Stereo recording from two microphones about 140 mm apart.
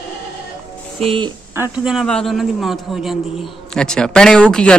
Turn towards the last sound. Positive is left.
turn(degrees=5)  # may be behind; listen again after turning